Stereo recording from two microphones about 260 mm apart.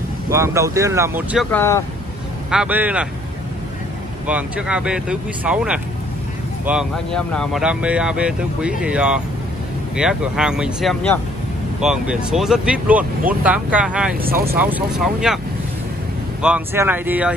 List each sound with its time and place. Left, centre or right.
0.3 s speech: centre
1.5 s speech: centre
2.5 s speech: centre
4.3 s speech: centre
14.2 s speech: right
15.0 s speech: centre
16.3 s speech: centre